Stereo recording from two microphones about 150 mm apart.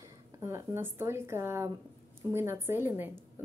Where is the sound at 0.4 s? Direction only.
15° right (ahead or behind).